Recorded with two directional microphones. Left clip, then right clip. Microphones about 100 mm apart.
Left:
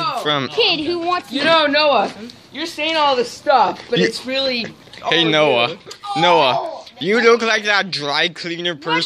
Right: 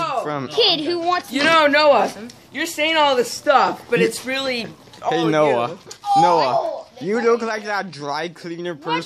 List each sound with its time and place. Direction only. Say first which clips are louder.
0.2 s a woman's voice: left 6 dB; 15° left (ahead or behind)
0.6 s a woman's voice: right 4 dB; 10° right (ahead or behind)
1.3 s a man's voice: even; 45° right (ahead or behind)
3.4 s speech: left 2 dB; 55° right (ahead or behind)
4.1 s speech: left 3 dB; 30° right (ahead or behind)
6.1 s a woman's voice: left 1 dB; 10° right (ahead or behind)
6.5 s a sound: right 1 dB; 15° left (ahead or behind)
7.2 s speech: left 5 dB; centre (ahead or behind)